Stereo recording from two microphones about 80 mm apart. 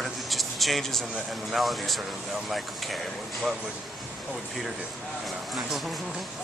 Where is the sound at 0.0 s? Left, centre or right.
Centre.